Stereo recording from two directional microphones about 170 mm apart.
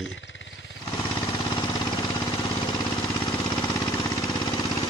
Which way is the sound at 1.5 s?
25° left (ahead or behind).